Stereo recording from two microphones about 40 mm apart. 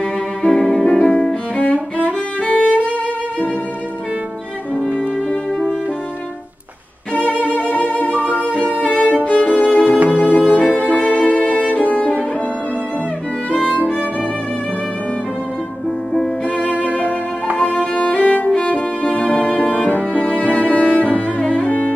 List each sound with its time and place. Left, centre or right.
0.4 s music: centre
1.0 s music: left
1.6 s music: left
5.3 s music: centre
7.2 s music: left
9.5 s violin: left
10.0 s music: left
13.5 s music: left
16.5 s music: left
18.5 s music: left
21.4 s cello: left